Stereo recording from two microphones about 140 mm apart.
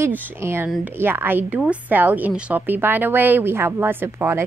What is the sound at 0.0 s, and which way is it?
A woman's voice, 20° right (ahead or behind).